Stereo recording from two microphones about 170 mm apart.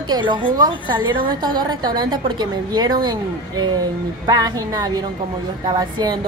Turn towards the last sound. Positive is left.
turn(degrees=-25)  # may be behind; listen again after turning